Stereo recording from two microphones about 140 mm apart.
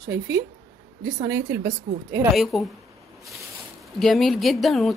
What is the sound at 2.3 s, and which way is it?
Speech, centre (ahead or behind).